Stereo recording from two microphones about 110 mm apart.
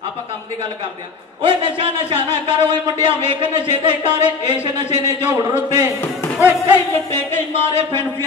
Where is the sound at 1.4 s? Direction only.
50° right (ahead or behind).